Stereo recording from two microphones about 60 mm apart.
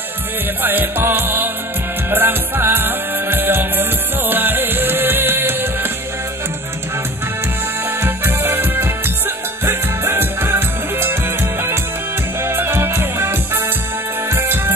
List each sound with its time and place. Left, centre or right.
0.6 s music: right
8.0 s music: right
12.4 s music: right